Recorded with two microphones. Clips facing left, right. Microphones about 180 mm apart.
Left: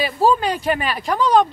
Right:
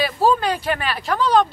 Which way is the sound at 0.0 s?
5° left (ahead or behind).